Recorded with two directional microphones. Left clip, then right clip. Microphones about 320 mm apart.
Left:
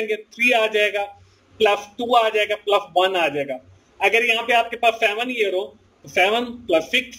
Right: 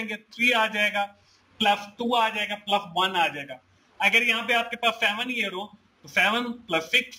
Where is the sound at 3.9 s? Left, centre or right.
Right.